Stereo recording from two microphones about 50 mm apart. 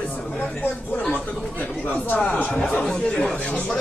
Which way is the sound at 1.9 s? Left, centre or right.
Left.